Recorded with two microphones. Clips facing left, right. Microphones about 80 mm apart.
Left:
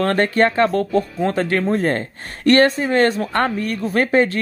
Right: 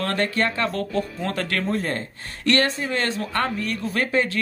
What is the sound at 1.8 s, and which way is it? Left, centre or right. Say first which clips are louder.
Speech: left 7 dB; left.